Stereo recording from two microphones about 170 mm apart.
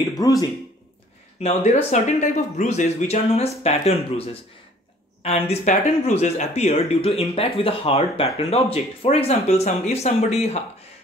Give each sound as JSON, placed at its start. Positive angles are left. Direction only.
{"t": 0.2, "sound": "speech", "side_deg": 20}
{"t": 1.4, "sound": "speech", "side_deg": 40}